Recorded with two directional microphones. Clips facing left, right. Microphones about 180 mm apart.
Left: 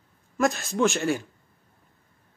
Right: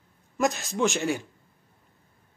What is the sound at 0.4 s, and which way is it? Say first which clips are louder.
Speech: left 2 dB; 15° right (ahead or behind).